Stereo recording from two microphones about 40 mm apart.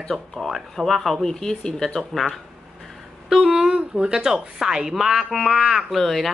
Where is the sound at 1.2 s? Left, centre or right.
Centre.